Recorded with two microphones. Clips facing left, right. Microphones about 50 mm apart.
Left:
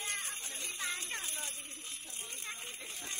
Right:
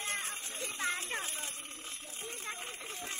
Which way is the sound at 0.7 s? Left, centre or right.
Right.